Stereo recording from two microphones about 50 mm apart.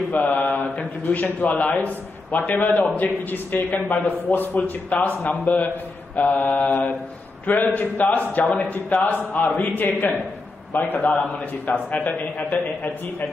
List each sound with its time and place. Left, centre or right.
0.1 s mantra: left
1.0 s a man's voice: left